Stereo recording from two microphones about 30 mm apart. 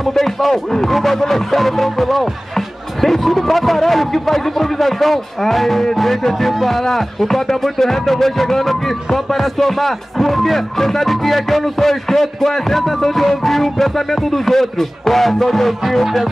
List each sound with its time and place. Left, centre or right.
0.0 s speech: centre